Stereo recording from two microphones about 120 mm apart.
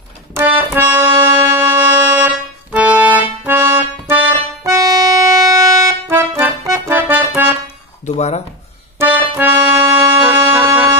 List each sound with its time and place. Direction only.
0.3 s keyboard: 20° right (ahead or behind)
4.6 s music: 25° right (ahead or behind)
8.0 s music: 70° left (ahead or behind)
8.9 s music: 20° right (ahead or behind)